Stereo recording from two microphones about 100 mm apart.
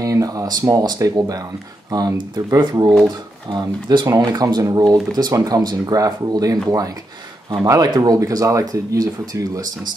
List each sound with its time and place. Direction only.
0.0 s speech: 35° right (ahead or behind)
4.1 s speech: 35° right (ahead or behind)